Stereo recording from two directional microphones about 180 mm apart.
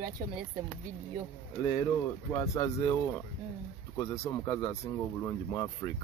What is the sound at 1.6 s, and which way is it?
Speech, 20° left (ahead or behind).